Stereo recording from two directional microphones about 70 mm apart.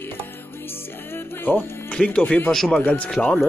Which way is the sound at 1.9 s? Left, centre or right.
Centre.